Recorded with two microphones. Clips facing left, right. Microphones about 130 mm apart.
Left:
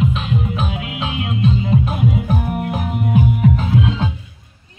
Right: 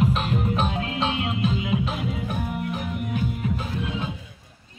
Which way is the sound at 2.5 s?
65° left (ahead or behind).